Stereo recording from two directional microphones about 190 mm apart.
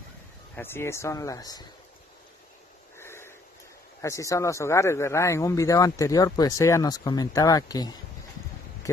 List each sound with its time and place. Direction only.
0.6 s speech: 15° left (ahead or behind)
3.0 s a sound: 15° left (ahead or behind)
4.0 s speech: 15° left (ahead or behind)